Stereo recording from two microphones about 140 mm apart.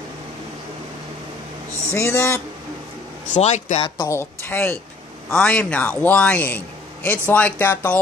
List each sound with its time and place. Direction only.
2.0 s speech: 20° left (ahead or behind)
3.3 s speech: 55° left (ahead or behind)
4.0 s a man's voice: 15° left (ahead or behind)